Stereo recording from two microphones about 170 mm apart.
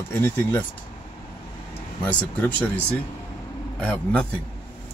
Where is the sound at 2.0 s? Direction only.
10° left (ahead or behind).